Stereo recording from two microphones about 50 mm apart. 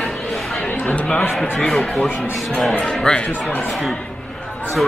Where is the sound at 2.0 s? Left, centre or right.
Left.